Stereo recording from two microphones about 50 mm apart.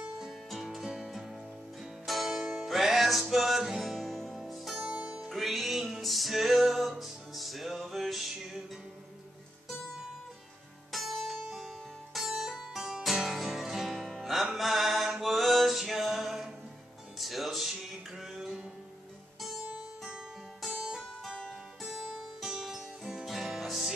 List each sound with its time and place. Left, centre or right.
0.2 s music: centre
4.9 s music: right
5.3 s music: centre
10.9 s music: centre
14.6 s mantra: centre
17.2 s music: centre
19.6 s music: centre
21.8 s music: centre